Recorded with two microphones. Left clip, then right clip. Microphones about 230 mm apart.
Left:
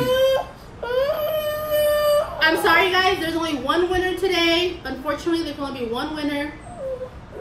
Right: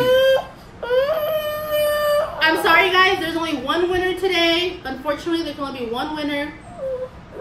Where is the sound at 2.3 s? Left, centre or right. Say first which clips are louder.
Right 4 dB; centre.